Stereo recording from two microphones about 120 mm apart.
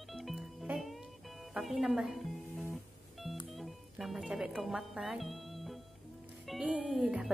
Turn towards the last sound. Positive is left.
turn(degrees=-5)  # may be behind; listen again after turning